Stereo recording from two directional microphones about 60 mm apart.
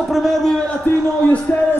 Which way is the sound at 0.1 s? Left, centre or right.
Centre.